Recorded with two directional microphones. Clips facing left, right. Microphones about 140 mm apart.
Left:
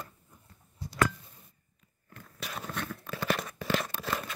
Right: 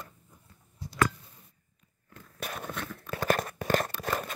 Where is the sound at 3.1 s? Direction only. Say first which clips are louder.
Right 4 dB; 45° right (ahead or behind).